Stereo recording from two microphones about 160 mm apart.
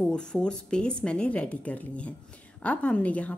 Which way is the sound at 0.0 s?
5° left (ahead or behind).